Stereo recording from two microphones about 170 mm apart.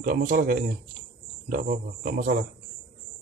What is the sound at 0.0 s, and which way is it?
Speech, 55° right (ahead or behind).